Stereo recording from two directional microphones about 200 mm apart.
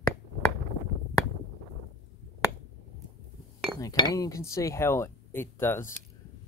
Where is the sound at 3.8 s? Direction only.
15° left (ahead or behind).